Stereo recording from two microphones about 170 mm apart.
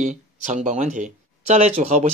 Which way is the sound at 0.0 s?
45° right (ahead or behind).